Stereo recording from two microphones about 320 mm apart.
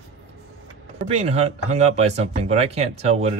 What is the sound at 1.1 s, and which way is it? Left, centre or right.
Speech, centre.